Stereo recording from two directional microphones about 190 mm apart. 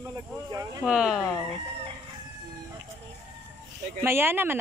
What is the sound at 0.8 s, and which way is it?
Speech, 5° right (ahead or behind).